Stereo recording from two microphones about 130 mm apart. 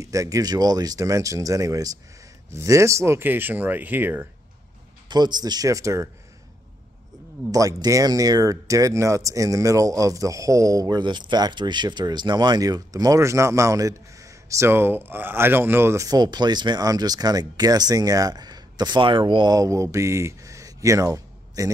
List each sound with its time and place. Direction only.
0.0 s speech: 25° right (ahead or behind)
5.0 s speech: 35° right (ahead or behind)
7.5 s speech: 25° right (ahead or behind)